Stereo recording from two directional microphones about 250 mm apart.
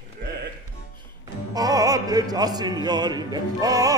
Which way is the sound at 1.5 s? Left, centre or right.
Centre.